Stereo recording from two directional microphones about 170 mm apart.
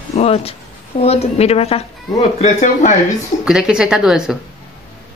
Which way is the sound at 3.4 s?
5° right (ahead or behind).